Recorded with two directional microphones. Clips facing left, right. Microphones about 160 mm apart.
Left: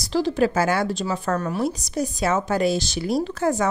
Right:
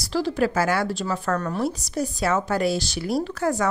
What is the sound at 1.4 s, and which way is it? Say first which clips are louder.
Speech: left 1 dB; 10° left (ahead or behind).